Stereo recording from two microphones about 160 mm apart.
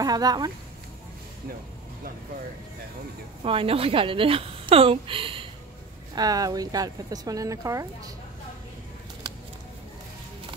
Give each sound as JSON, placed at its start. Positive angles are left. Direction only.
{"t": 0.0, "sound": "speech", "side_deg": -25}
{"t": 3.4, "sound": "a woman's voice", "side_deg": -35}
{"t": 6.1, "sound": "speech", "side_deg": -25}